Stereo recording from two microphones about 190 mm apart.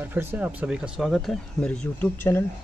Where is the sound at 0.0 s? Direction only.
10° right (ahead or behind).